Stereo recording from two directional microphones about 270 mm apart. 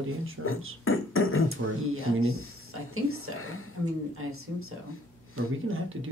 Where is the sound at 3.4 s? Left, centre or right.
Left.